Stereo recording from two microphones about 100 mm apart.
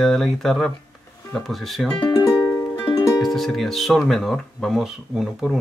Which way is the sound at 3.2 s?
Centre (ahead or behind).